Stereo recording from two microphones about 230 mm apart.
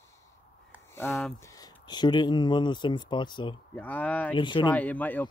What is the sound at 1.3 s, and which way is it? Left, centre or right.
Speech, centre.